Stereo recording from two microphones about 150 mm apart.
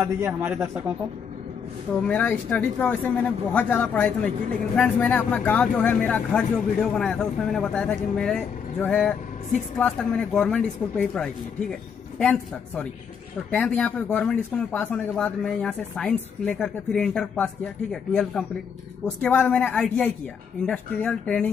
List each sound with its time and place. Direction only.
0.0 s a man's voice: 15° right (ahead or behind)
2.0 s speech: 10° left (ahead or behind)
19.0 s speech: 10° left (ahead or behind)